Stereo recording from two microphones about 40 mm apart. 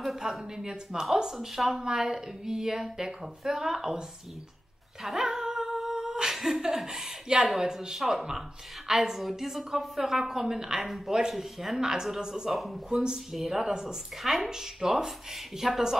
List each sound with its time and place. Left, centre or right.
0.2 s a woman's voice: centre
5.0 s humming: centre
7.6 s a woman's voice: centre
12.4 s speech: centre
12.9 s speech: centre
13.3 s a woman's voice: centre